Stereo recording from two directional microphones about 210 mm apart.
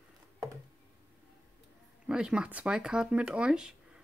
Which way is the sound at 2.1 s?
5° right (ahead or behind).